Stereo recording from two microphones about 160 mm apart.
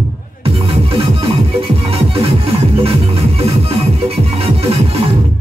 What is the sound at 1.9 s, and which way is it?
Music, 35° right (ahead or behind).